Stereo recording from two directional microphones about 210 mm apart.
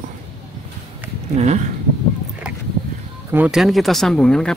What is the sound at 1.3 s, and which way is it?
Speech, 35° right (ahead or behind).